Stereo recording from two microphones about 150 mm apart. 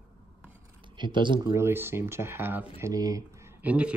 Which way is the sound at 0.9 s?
30° right (ahead or behind).